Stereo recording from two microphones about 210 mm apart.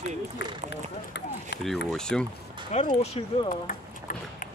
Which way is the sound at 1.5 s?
55° left (ahead or behind).